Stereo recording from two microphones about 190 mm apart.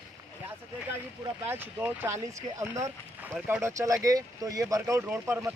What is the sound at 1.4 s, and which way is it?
Speech, 10° right (ahead or behind).